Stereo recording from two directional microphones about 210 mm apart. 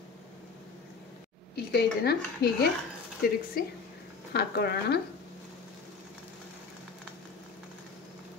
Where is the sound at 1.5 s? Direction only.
50° left (ahead or behind).